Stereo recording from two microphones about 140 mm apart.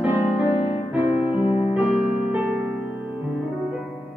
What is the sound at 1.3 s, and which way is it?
Music, 40° left (ahead or behind).